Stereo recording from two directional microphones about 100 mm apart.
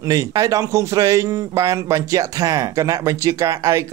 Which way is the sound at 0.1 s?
40° right (ahead or behind).